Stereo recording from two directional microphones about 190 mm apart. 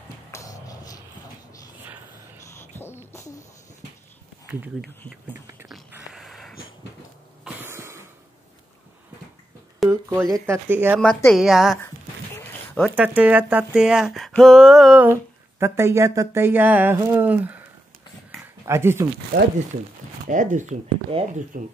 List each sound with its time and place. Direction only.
0.3 s music: 20° left (ahead or behind)
2.5 s a sound: 10° left (ahead or behind)
4.8 s speech: centre (ahead or behind)
5.7 s a sound: 5° right (ahead or behind)
7.4 s cough: 10° right (ahead or behind)
9.8 s speech: 15° right (ahead or behind)
12.4 s zipper: 5° left (ahead or behind)
12.9 s speech: 10° right (ahead or behind)
18.7 s speech: 15° right (ahead or behind)
20.2 s speech: 45° right (ahead or behind)
21.2 s speech: 30° right (ahead or behind)
21.5 s speech: 45° right (ahead or behind)